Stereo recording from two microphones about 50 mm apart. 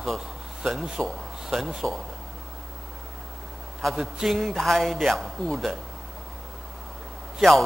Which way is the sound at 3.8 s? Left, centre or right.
Centre.